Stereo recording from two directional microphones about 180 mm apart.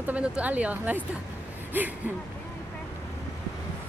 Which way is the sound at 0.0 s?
10° right (ahead or behind).